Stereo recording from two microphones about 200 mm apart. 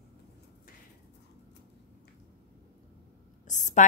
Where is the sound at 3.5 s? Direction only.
35° left (ahead or behind).